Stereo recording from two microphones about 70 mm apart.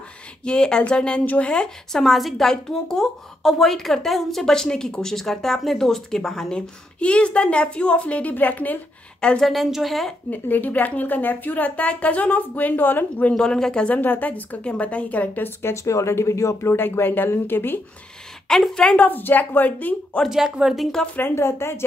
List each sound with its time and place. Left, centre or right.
0.5 s a woman's voice: centre
9.4 s a woman's voice: centre
10.3 s speech: left
13.3 s speech: centre; by 15.7 s left
15.7 s speech: left
16.7 s speech: left
18.5 s a woman's voice: centre
19.0 s speech: left
20.2 s speech: centre
21.2 s a woman's voice: left